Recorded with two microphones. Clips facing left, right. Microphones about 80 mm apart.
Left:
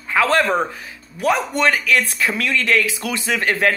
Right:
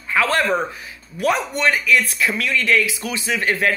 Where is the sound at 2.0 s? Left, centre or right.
Left.